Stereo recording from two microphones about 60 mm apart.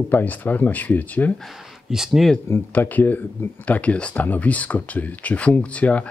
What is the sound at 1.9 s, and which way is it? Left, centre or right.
Speech, centre.